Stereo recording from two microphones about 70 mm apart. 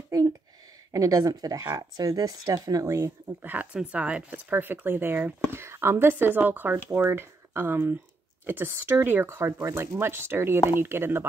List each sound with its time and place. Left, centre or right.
0.9 s speech: right
2.8 s speech: right
3.4 s speech: right